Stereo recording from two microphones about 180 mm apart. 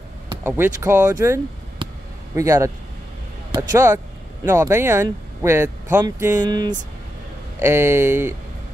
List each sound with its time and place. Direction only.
0.4 s speech: 15° right (ahead or behind)